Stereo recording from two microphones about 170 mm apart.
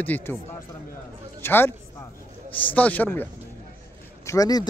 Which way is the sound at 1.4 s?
15° left (ahead or behind).